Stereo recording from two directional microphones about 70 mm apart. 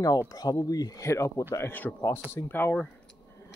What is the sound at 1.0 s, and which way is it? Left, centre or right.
Speech, left.